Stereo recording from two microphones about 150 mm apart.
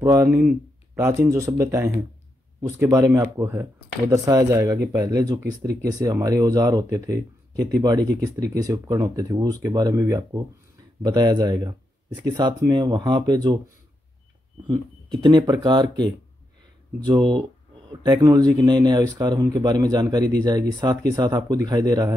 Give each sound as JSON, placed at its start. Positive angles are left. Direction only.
{"t": 0.0, "sound": "speech", "side_deg": -20}
{"t": 0.3, "sound": "speech", "side_deg": -10}
{"t": 14.7, "sound": "speech", "side_deg": -30}